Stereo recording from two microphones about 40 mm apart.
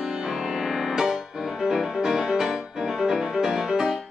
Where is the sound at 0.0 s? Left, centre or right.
Centre.